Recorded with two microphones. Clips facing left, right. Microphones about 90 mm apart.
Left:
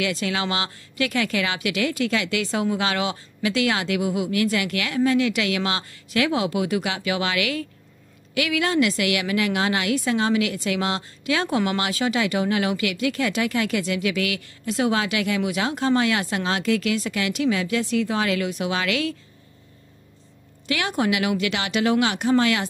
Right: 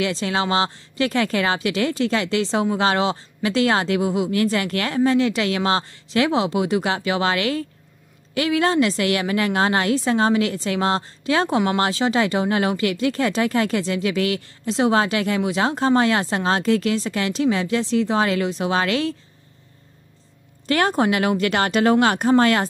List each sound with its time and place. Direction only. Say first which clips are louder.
0.0 s a woman's voice: right 3 dB; 30° right (ahead or behind)
20.6 s a woman's voice: right 5 dB; 40° right (ahead or behind)